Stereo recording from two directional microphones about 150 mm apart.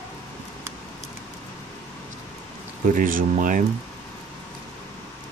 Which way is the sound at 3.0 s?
65° right (ahead or behind).